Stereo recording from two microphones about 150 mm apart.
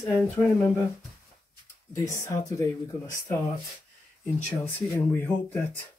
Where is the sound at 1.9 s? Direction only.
20° left (ahead or behind).